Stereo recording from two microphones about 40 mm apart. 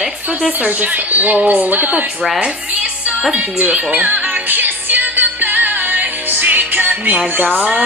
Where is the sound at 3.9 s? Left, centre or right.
Right.